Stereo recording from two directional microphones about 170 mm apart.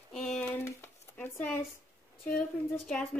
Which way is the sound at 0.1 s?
5° left (ahead or behind).